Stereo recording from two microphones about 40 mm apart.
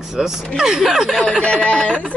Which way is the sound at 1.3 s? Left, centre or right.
Left.